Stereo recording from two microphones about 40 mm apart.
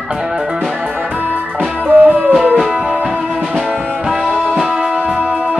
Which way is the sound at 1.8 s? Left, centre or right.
Right.